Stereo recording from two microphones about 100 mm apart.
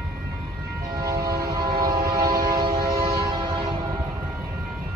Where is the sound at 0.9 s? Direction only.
40° right (ahead or behind).